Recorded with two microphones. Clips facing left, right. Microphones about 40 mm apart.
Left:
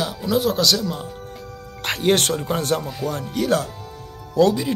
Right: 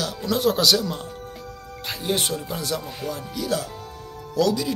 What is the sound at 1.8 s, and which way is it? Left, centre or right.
Speech, left.